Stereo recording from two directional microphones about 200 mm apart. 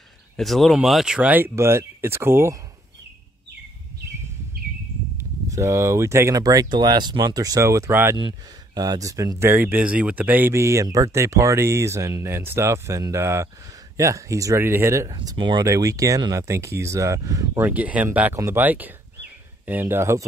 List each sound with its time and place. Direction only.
0.4 s speech: centre (ahead or behind)
4.6 s a sound: 45° right (ahead or behind)
5.1 s speech: 15° right (ahead or behind)